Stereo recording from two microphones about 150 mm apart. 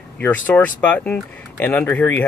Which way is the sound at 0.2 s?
10° left (ahead or behind).